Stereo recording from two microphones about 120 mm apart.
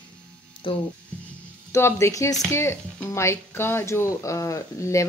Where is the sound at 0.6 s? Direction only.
45° left (ahead or behind).